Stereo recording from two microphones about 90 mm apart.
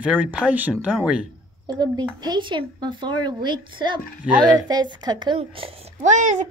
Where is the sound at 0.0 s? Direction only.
15° right (ahead or behind).